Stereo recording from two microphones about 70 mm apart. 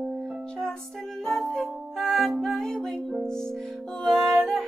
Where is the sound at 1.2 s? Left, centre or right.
Centre.